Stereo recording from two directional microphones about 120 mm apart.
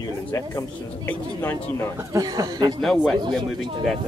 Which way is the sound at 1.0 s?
15° left (ahead or behind).